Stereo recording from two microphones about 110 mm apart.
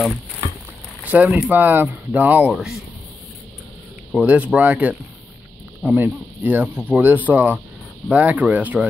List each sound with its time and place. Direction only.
1.0 s speech: 15° right (ahead or behind)
2.5 s speech: centre (ahead or behind)
4.1 s speech: 15° right (ahead or behind)